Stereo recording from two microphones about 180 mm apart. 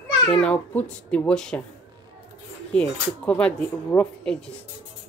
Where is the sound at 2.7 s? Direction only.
5° left (ahead or behind).